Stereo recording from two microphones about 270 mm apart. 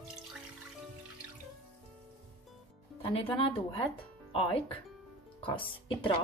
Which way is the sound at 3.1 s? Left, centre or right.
Left.